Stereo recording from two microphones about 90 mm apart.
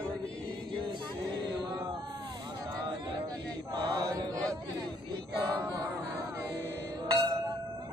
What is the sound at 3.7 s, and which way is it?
Chant, 55° right (ahead or behind).